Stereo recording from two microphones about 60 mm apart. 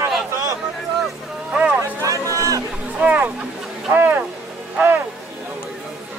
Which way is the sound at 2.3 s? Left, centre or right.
Right.